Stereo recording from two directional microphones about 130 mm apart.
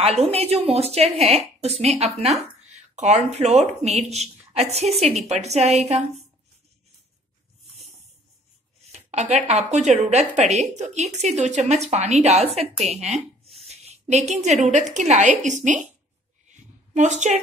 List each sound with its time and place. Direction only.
0.0 s a woman's voice: 50° right (ahead or behind)
8.9 s a woman's voice: 60° right (ahead or behind)
16.4 s a sound: 65° right (ahead or behind)